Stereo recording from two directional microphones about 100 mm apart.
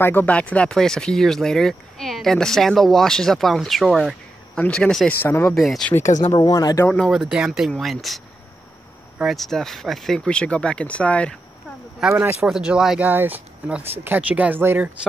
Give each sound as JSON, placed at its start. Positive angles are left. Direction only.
{"t": 0.0, "sound": "speech", "side_deg": 20}
{"t": 4.6, "sound": "speech", "side_deg": 10}
{"t": 5.2, "sound": "speech", "side_deg": 20}
{"t": 5.5, "sound": "speech", "side_deg": 0}
{"t": 6.3, "sound": "speech", "side_deg": 40}
{"t": 7.1, "sound": "speech", "side_deg": -10}
{"t": 9.2, "sound": "speech", "side_deg": 0}
{"t": 12.1, "sound": "speech", "side_deg": -20}
{"t": 12.4, "sound": "speech", "side_deg": -5}
{"t": 13.1, "sound": "speech", "side_deg": -20}